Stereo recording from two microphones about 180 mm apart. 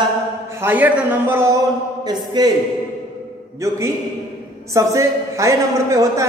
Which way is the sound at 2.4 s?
20° right (ahead or behind).